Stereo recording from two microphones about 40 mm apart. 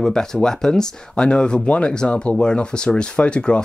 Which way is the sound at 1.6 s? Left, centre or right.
Left.